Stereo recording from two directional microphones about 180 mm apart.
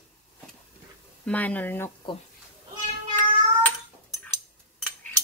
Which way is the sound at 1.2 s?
10° left (ahead or behind).